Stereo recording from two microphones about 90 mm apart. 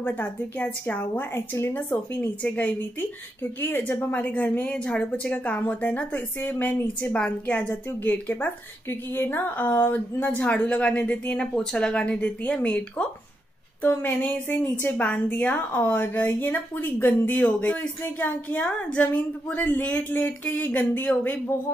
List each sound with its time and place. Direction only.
0.0 s a woman's voice: 20° left (ahead or behind)